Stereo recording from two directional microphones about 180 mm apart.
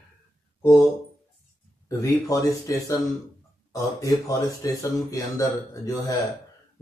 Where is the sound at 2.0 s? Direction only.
20° left (ahead or behind).